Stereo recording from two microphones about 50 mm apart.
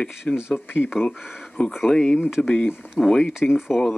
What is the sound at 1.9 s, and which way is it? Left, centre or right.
Speech, centre.